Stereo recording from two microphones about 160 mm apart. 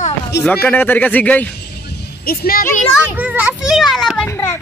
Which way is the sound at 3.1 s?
10° right (ahead or behind).